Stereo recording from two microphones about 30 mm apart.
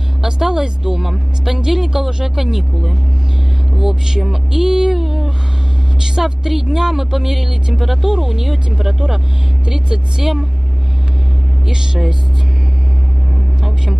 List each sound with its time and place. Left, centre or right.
0.2 s a woman's voice: centre
4.9 s a woman's voice: centre
5.9 s a woman's voice: right
11.7 s speech: right